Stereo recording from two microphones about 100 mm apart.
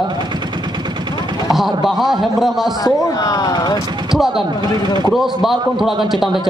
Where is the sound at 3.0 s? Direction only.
40° left (ahead or behind).